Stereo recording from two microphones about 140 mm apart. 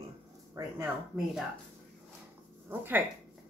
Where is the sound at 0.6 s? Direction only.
20° right (ahead or behind).